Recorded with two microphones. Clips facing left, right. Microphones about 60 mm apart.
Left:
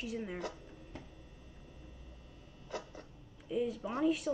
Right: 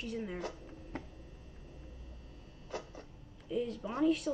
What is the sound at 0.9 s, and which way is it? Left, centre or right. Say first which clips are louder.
Tick-tock: right 7 dB; right.